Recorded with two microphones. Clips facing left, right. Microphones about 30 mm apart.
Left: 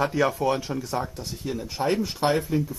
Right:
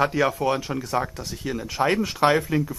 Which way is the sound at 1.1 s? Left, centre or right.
Right.